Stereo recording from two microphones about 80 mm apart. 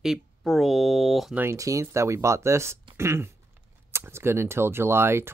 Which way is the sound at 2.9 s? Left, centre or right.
Right.